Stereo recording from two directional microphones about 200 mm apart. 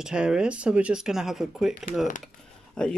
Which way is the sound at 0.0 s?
5° right (ahead or behind).